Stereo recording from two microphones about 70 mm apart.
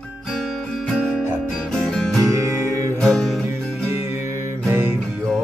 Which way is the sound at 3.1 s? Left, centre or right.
Centre.